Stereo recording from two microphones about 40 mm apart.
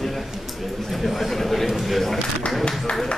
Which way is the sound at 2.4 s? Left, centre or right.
Left.